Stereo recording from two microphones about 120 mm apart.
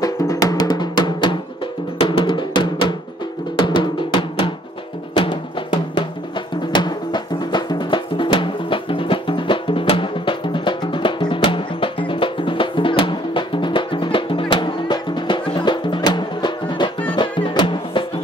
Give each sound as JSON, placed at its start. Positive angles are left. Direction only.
{"t": 0.0, "sound": "music", "side_deg": 30}